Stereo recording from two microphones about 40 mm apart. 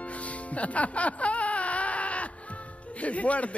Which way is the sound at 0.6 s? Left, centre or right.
Left.